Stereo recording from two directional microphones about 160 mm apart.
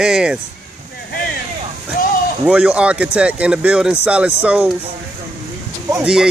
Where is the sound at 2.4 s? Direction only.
5° right (ahead or behind).